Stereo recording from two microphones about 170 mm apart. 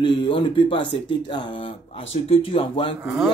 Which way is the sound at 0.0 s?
30° left (ahead or behind).